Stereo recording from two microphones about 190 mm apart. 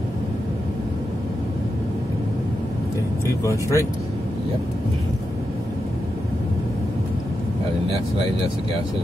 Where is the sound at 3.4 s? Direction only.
15° left (ahead or behind).